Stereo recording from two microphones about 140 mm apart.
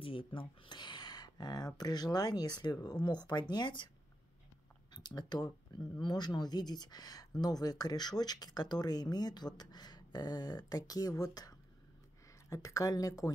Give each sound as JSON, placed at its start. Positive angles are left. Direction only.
{"t": 0.0, "sound": "speech", "side_deg": 40}
{"t": 4.9, "sound": "speech", "side_deg": 30}